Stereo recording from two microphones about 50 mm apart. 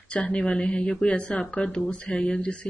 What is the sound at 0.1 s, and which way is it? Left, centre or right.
Speech, left.